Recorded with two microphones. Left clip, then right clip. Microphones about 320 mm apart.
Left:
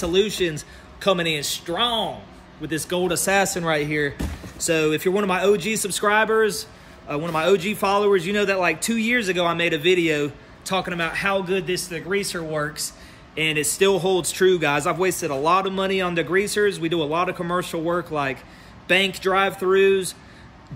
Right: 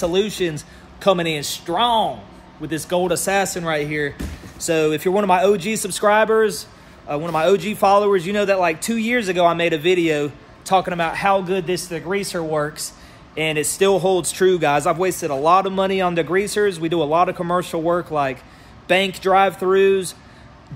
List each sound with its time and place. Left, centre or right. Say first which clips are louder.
0.0 s a man's voice: right 1 dB; centre